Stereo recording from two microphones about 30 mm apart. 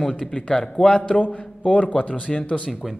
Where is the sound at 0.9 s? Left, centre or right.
Left.